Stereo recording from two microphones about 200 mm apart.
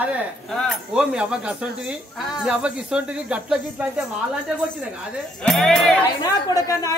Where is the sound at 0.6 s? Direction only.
Centre (ahead or behind).